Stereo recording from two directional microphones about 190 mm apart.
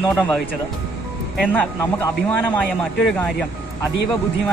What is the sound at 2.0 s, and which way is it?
A man's voice, 10° left (ahead or behind).